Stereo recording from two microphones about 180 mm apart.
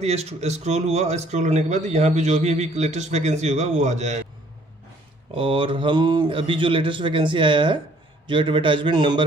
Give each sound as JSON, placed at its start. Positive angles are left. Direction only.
{"t": 0.0, "sound": "speech", "side_deg": -35}
{"t": 5.3, "sound": "speech", "side_deg": -30}